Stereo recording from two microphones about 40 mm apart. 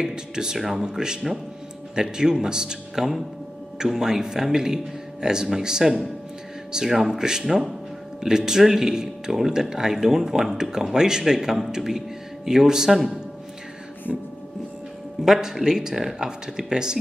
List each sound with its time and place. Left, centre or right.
0.0 s speech: centre
0.6 s speech: centre
0.9 s speech: centre
15.2 s speech: centre